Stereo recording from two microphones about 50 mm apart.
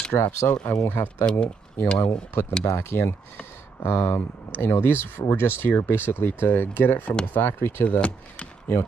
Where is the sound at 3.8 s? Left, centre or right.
Left.